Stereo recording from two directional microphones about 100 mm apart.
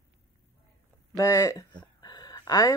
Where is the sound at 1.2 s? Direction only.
35° left (ahead or behind).